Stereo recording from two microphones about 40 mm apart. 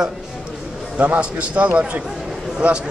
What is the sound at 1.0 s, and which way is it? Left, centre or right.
A man's voice, right.